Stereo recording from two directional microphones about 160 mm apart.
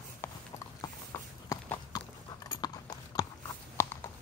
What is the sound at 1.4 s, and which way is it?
Clip-clop, 20° left (ahead or behind).